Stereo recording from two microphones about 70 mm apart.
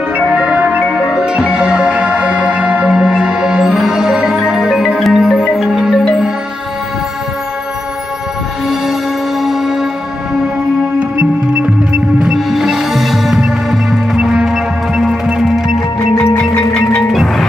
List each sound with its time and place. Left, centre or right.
0.2 s music: centre
0.8 s music: centre
9.4 s music: centre
12.2 s music: centre
16.5 s music: centre